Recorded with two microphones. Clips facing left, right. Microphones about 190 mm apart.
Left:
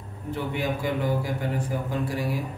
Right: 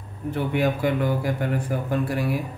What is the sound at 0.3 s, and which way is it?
Speech, 60° right (ahead or behind).